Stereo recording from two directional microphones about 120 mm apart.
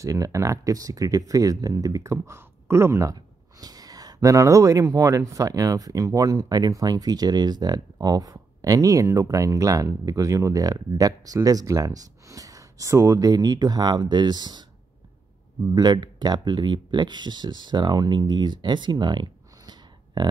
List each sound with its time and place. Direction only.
0.0 s speech: 25° right (ahead or behind)
15.7 s speech: 35° right (ahead or behind)